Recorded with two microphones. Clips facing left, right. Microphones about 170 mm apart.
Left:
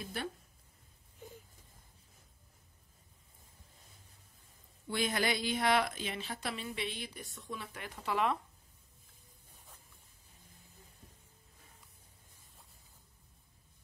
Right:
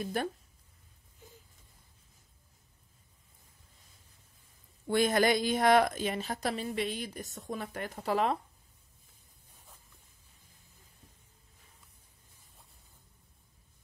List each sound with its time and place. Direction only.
0.0 s a woman's voice: 45° right (ahead or behind)
4.8 s a woman's voice: 45° right (ahead or behind)